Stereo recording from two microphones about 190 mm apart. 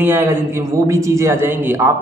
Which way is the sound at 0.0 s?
10° right (ahead or behind).